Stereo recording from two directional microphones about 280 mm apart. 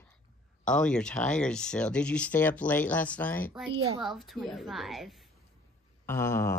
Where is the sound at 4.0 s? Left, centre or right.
Centre.